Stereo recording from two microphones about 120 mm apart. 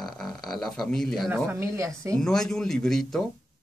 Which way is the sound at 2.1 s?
5° left (ahead or behind).